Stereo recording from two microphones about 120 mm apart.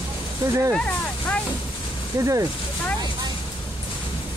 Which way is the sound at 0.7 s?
10° left (ahead or behind).